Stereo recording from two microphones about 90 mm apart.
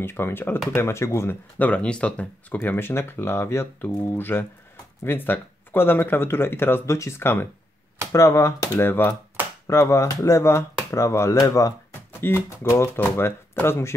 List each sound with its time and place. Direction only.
0.0 s speech: 25° left (ahead or behind)
1.6 s speech: 15° left (ahead or behind); by 11.7 s 40° left (ahead or behind)
12.1 s a sound: 25° left (ahead or behind)
12.4 s speech: 30° left (ahead or behind)